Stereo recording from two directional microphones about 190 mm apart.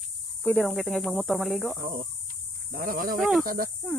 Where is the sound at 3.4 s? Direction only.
50° right (ahead or behind).